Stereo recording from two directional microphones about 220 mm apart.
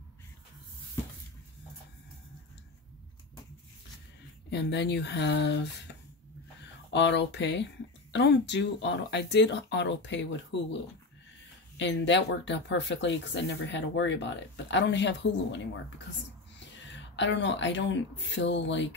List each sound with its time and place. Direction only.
4.5 s speech: 50° left (ahead or behind)
6.9 s speech: 50° left (ahead or behind)
17.1 s speech: 55° left (ahead or behind)